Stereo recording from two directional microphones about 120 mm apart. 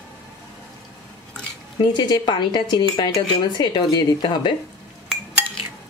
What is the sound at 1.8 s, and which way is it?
A woman's voice, 35° left (ahead or behind).